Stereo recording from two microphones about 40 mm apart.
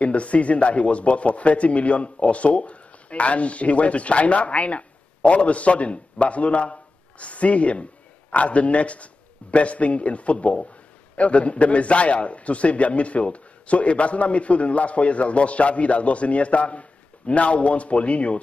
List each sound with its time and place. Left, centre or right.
0.0 s speech: left